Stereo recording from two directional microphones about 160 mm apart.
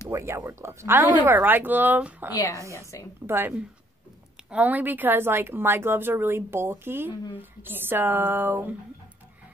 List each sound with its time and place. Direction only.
0.1 s speech: 15° right (ahead or behind)
2.3 s a woman's voice: 20° left (ahead or behind)
3.3 s speech: 15° right (ahead or behind)